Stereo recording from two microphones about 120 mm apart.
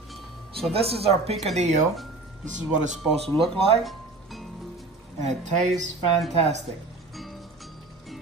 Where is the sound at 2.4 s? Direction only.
90° right.